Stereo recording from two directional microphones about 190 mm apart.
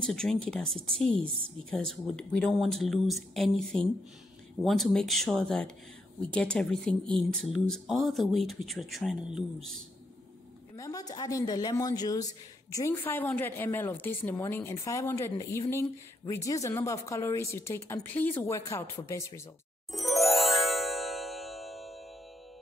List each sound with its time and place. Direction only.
0.0 s speech: 5° left (ahead or behind)
10.8 s a woman's voice: 20° left (ahead or behind)
19.9 s music: centre (ahead or behind)